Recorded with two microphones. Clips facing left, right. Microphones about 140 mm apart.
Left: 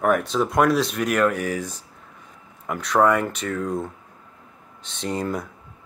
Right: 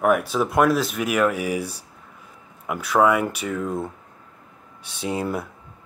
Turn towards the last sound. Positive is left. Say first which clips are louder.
# right 1 dB
turn(degrees=-10)  # may be behind; listen again after turning